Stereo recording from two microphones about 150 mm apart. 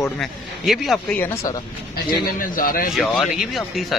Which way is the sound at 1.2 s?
15° left (ahead or behind).